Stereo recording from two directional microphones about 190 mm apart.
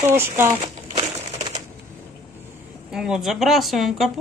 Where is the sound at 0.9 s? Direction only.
35° right (ahead or behind).